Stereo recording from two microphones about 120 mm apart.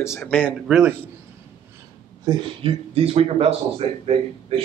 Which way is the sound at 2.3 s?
35° right (ahead or behind).